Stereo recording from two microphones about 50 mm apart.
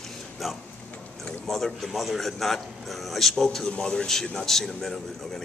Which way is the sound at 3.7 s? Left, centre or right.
Centre.